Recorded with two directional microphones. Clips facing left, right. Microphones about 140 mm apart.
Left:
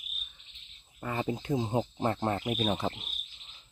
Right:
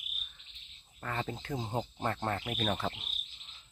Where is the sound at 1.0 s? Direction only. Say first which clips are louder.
Left 5 dB; 15° left (ahead or behind).